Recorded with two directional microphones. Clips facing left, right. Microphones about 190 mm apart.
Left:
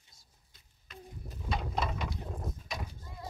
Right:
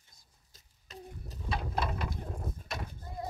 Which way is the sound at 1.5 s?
5° right (ahead or behind).